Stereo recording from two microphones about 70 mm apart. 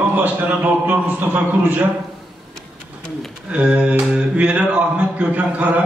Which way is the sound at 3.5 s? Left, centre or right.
Centre.